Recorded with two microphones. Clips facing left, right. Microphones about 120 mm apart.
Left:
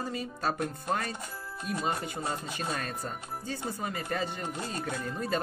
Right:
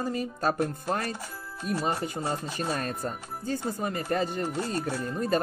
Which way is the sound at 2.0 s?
35° right (ahead or behind).